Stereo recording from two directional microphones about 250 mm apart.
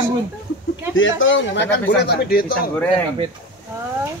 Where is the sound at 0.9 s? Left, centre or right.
Left.